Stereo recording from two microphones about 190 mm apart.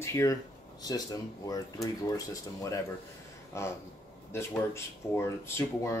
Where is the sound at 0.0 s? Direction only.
15° left (ahead or behind).